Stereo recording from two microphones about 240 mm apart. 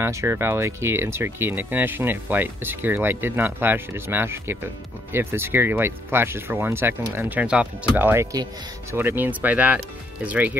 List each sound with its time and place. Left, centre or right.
0.0 s speech: centre